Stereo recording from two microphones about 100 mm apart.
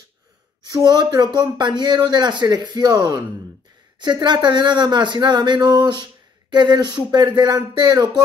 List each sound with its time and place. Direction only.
0.7 s speech: 40° right (ahead or behind)